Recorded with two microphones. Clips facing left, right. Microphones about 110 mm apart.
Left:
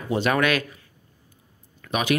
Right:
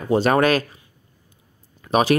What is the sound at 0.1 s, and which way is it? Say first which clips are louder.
Speech: right 5 dB; 35° right (ahead or behind).